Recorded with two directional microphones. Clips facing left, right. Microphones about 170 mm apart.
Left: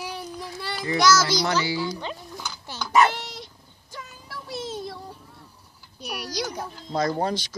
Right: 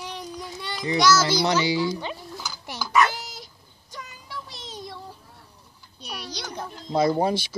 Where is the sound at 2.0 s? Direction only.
5° right (ahead or behind).